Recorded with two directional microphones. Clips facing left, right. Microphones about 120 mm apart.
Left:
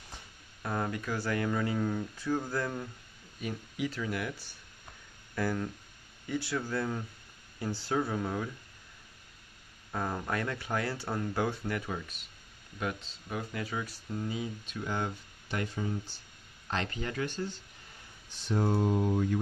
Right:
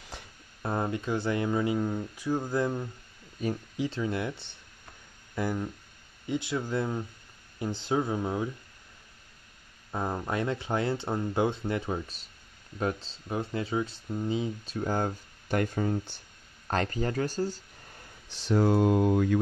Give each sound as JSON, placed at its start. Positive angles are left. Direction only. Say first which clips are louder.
{"t": 0.1, "sound": "a sound", "louder": "right 5 dB", "side_deg": -90}
{"t": 0.6, "sound": "speech", "louder": "right 3 dB", "side_deg": -25}
{"t": 3.3, "sound": "speech", "louder": "right 5 dB", "side_deg": -35}
{"t": 9.9, "sound": "speech", "louder": "right 3 dB", "side_deg": -20}
{"t": 14.8, "sound": "speech", "louder": "right 5 dB", "side_deg": -40}
{"t": 16.6, "sound": "speech", "louder": "right 6 dB", "side_deg": -45}
{"t": 18.3, "sound": "speech", "louder": "right 5 dB", "side_deg": -90}